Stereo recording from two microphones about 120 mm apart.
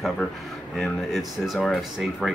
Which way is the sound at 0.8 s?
Centre (ahead or behind).